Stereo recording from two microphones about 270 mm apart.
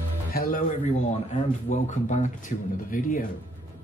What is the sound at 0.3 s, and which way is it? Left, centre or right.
Speech, left.